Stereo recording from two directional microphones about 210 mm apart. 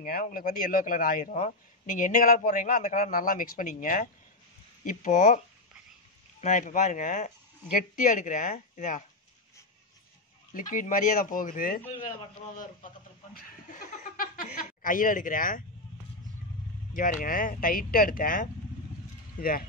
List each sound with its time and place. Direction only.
0.0 s a man's voice: 45° left (ahead or behind)
6.4 s a man's voice: 35° left (ahead or behind)
10.5 s a man's voice: 40° left (ahead or behind)
13.3 s speech: 40° left (ahead or behind)
16.9 s a man's voice: 40° left (ahead or behind)